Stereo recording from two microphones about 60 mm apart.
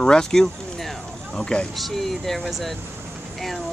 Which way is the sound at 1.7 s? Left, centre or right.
Centre.